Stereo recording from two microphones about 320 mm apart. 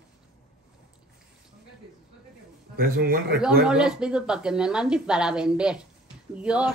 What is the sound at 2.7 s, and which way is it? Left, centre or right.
Speech, right.